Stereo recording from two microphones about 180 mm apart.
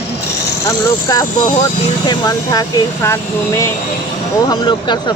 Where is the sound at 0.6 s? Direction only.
20° left (ahead or behind).